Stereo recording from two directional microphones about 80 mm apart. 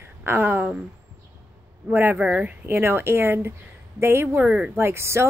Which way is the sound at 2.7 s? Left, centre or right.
Right.